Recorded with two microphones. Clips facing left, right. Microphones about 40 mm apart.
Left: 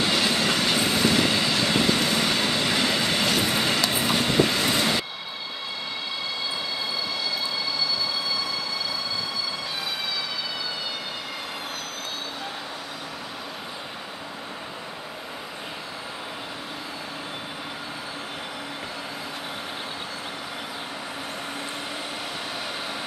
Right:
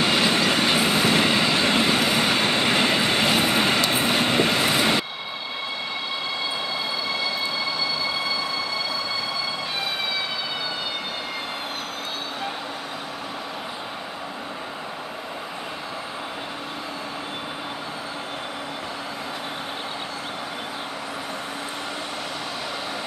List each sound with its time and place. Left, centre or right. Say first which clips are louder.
0.0 s train: right 3 dB; right